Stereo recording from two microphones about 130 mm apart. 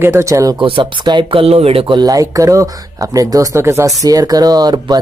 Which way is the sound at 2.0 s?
25° right (ahead or behind).